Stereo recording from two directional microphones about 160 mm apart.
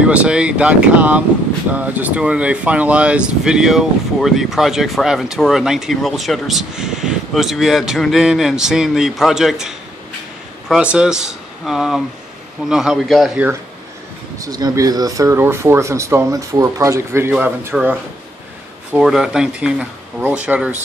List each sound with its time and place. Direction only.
0.0 s speech: 5° right (ahead or behind)
14.4 s speech: 20° right (ahead or behind)
18.9 s speech: 5° right (ahead or behind)